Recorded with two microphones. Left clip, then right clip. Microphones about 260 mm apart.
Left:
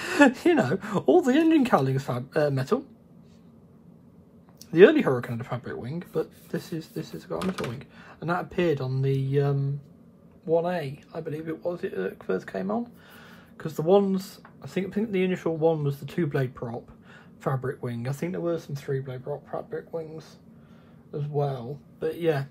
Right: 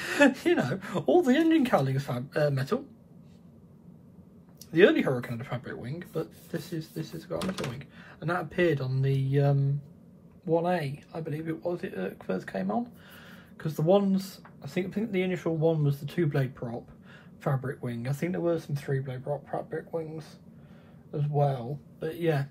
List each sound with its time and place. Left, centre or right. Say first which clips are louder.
0.0 s speech: left 3 dB; left
4.6 s speech: left 5 dB; left
18.3 s speech: right 1 dB; centre
22.0 s speech: left 3 dB; left